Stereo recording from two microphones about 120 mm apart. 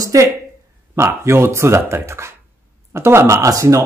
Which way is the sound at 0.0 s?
25° right (ahead or behind).